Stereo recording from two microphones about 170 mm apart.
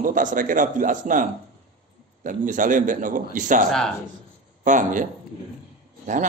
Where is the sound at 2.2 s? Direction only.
50° right (ahead or behind).